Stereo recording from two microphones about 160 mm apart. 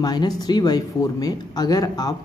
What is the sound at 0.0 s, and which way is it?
Speech, 25° left (ahead or behind).